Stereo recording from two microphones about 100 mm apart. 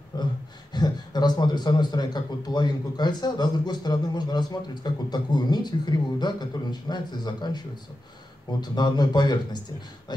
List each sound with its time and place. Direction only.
0.1 s a man's voice: 40° left (ahead or behind)